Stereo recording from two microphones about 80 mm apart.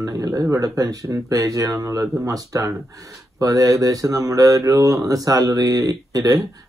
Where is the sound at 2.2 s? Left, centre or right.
Right.